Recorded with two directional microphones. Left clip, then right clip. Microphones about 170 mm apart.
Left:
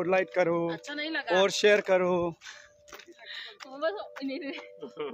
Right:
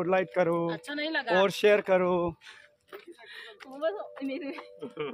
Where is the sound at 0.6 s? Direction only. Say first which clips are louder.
Right 1 dB; 45° right (ahead or behind).